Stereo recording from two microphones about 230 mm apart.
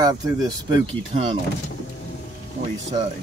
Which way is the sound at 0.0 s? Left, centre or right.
Centre.